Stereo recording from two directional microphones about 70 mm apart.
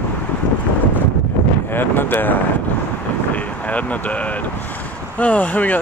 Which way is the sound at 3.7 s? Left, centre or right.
Centre.